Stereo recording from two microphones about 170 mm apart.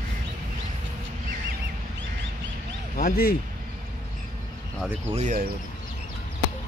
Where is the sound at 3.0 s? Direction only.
60° left (ahead or behind).